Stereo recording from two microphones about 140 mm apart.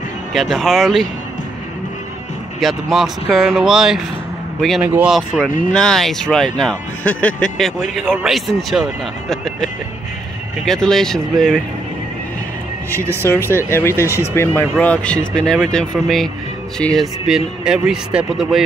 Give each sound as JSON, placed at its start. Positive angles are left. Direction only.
{"t": 0.3, "sound": "speech", "side_deg": 0}
{"t": 2.6, "sound": "speech", "side_deg": 0}
{"t": 4.8, "sound": "speech", "side_deg": -10}
{"t": 5.1, "sound": "speech", "side_deg": 0}
{"t": 13.4, "sound": "speech", "side_deg": -20}
{"t": 13.7, "sound": "speech", "side_deg": 20}